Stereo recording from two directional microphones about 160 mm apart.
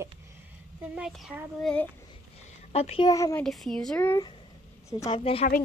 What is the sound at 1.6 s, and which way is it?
Speech, 5° left (ahead or behind).